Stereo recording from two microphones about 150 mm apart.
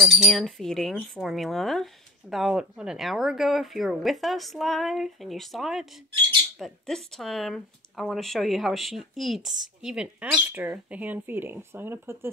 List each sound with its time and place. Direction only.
0.0 s speech: centre (ahead or behind); by 12.3 s 15° right (ahead or behind)